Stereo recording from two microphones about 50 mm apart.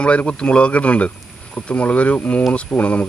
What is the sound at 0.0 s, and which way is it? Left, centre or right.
Speech, left.